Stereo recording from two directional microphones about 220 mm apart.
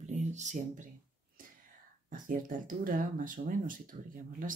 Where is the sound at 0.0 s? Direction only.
30° right (ahead or behind).